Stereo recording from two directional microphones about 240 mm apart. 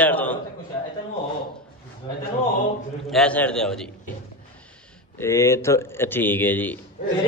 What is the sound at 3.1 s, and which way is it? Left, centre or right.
Speech, centre.